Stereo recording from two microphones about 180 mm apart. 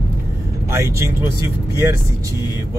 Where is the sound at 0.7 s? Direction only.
15° right (ahead or behind).